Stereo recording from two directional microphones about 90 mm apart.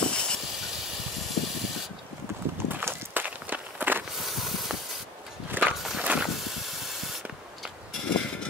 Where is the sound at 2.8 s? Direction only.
20° right (ahead or behind).